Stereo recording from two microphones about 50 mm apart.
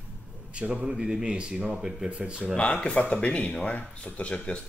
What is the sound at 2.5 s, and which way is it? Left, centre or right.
Speech, left.